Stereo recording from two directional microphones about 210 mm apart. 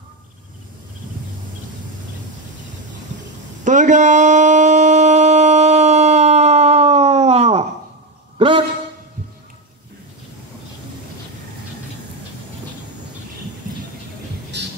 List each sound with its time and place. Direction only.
3.6 s a sound: 35° right (ahead or behind)
8.4 s a man's voice: 25° right (ahead or behind)
14.5 s music: 55° right (ahead or behind)